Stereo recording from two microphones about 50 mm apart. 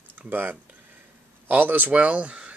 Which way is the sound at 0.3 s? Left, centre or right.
Right.